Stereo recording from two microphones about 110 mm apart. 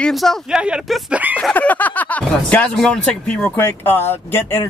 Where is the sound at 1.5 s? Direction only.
15° left (ahead or behind).